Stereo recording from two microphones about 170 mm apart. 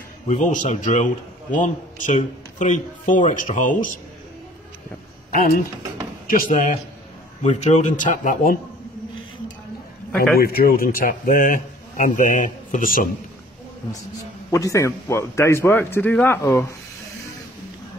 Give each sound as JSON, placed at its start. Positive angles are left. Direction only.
{"t": 0.3, "sound": "a man's voice", "side_deg": 50}
{"t": 5.3, "sound": "speech", "side_deg": 60}
{"t": 7.4, "sound": "a man's voice", "side_deg": 45}
{"t": 10.3, "sound": "a man's voice", "side_deg": 65}
{"t": 14.5, "sound": "a man's voice", "side_deg": 20}